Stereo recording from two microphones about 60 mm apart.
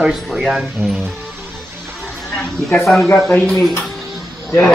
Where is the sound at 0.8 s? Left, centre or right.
Right.